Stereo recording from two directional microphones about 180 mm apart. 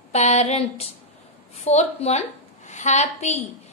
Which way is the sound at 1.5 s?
35° left (ahead or behind).